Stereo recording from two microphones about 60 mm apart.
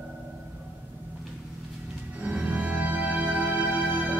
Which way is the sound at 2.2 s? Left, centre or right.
Right.